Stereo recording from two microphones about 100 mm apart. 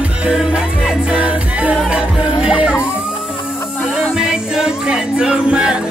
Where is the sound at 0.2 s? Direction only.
10° right (ahead or behind).